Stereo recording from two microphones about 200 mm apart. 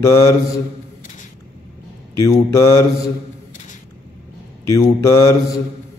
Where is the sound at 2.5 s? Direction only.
15° left (ahead or behind).